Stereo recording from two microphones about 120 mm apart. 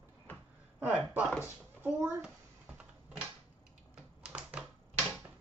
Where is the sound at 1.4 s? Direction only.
15° right (ahead or behind).